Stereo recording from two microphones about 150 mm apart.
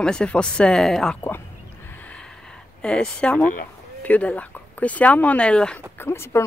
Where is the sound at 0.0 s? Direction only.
5° left (ahead or behind).